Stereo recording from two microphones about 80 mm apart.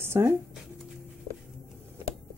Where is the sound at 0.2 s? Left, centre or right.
Right.